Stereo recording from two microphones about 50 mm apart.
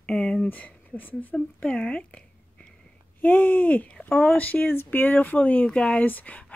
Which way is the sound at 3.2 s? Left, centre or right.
Left.